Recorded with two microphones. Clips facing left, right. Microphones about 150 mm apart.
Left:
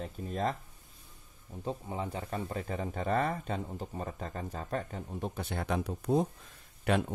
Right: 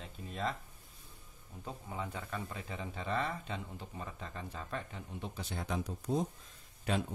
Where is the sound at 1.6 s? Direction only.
30° left (ahead or behind).